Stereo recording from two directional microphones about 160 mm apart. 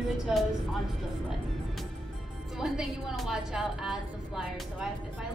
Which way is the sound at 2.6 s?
5° right (ahead or behind).